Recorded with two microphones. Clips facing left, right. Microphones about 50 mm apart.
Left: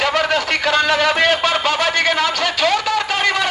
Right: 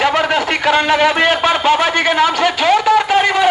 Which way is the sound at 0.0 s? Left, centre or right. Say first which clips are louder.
Right 3 dB; right.